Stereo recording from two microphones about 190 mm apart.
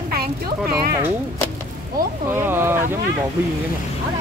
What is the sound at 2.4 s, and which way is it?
Speech, 10° right (ahead or behind).